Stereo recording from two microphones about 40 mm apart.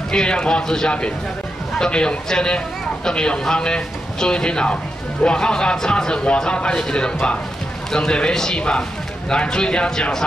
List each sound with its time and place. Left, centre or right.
0.1 s a man's voice: left